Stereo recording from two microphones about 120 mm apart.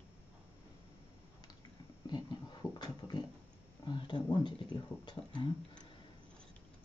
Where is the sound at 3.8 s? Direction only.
40° left (ahead or behind).